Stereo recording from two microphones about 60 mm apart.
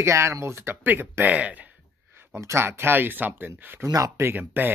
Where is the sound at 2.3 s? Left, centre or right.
Right.